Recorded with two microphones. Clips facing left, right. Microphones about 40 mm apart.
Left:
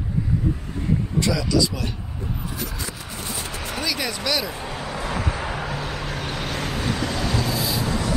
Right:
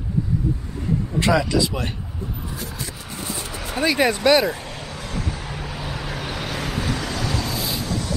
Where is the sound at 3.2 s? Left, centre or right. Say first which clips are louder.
Right 2 dB; centre.